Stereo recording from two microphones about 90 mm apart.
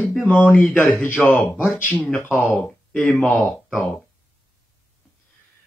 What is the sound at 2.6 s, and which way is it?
Speech, 5° left (ahead or behind).